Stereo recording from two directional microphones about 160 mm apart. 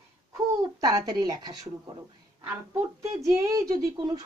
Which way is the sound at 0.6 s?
20° right (ahead or behind).